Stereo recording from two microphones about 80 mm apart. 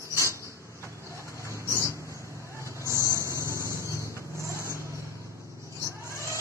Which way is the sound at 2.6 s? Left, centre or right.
Right.